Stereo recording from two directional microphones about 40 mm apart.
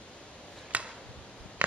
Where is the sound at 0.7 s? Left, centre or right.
Right.